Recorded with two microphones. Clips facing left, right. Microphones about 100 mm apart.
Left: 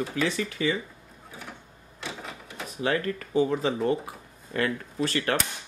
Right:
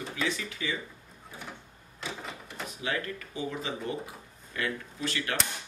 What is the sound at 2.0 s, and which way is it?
Printer, centre (ahead or behind).